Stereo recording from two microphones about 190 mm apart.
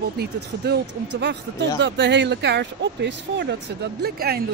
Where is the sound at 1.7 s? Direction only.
70° right (ahead or behind).